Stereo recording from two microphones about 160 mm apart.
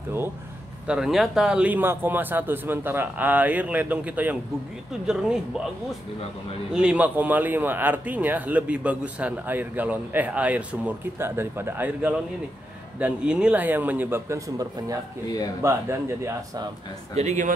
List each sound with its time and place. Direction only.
0.8 s speech: 5° right (ahead or behind)
6.7 s speech: 5° right (ahead or behind)
17.1 s speech: 45° right (ahead or behind)